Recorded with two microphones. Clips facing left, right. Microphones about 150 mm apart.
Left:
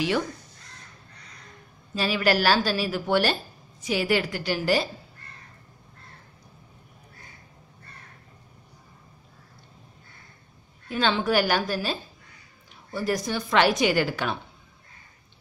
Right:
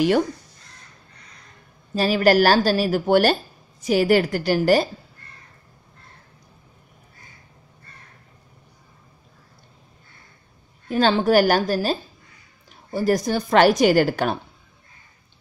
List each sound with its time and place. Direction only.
2.0 s a woman's voice: 40° right (ahead or behind)
10.9 s a woman's voice: 40° right (ahead or behind)